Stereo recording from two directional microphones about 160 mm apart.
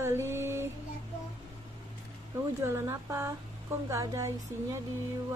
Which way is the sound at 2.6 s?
15° right (ahead or behind).